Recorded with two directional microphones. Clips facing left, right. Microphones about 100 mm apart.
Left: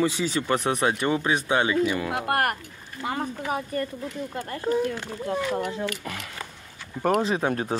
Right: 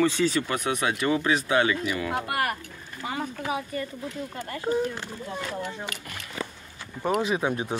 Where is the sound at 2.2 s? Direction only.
55° left (ahead or behind).